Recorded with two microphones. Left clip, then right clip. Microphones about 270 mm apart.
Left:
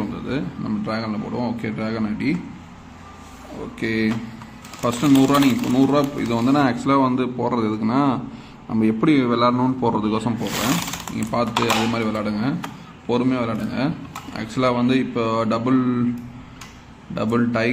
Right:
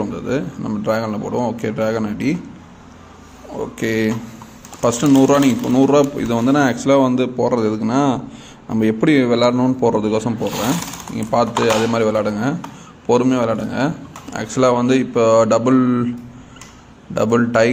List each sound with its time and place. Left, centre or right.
0.1 s speech: centre
3.8 s speech: centre
17.1 s speech: centre